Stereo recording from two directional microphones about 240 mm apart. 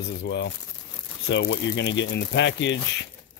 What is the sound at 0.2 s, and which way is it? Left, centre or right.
Speech, left.